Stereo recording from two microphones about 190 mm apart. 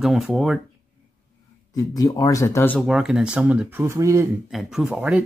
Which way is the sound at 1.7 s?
20° left (ahead or behind).